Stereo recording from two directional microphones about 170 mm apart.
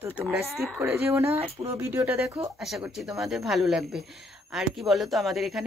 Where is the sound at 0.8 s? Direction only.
15° right (ahead or behind).